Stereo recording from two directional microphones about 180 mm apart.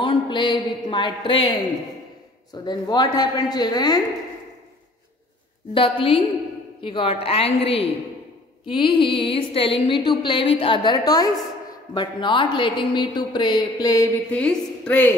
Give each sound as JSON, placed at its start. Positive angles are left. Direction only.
{"t": 0.0, "sound": "a woman's voice", "side_deg": 25}
{"t": 5.8, "sound": "a woman's voice", "side_deg": 30}
{"t": 14.3, "sound": "a woman's voice", "side_deg": 5}